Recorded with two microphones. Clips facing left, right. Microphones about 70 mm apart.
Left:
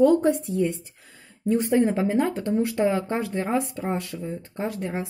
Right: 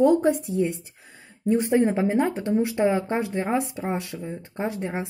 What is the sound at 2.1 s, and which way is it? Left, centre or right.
Speech, right.